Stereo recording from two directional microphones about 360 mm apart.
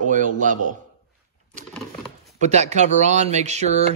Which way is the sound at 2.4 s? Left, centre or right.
Centre.